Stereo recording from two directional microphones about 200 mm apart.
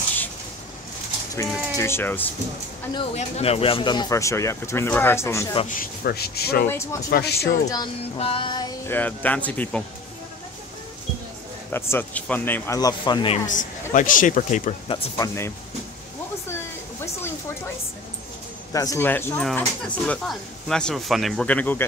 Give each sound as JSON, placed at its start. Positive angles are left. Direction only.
{"t": 1.8, "sound": "speech", "side_deg": 10}
{"t": 2.9, "sound": "speech", "side_deg": 30}
{"t": 5.7, "sound": "speech", "side_deg": 45}
{"t": 6.7, "sound": "speech", "side_deg": 15}
{"t": 7.1, "sound": "speech", "side_deg": 50}
{"t": 7.7, "sound": "speech", "side_deg": 25}
{"t": 11.7, "sound": "speech", "side_deg": 10}
{"t": 13.5, "sound": "speech", "side_deg": 40}
{"t": 14.9, "sound": "speech", "side_deg": 15}
{"t": 16.4, "sound": "a sound", "side_deg": 10}
{"t": 18.7, "sound": "speech", "side_deg": 15}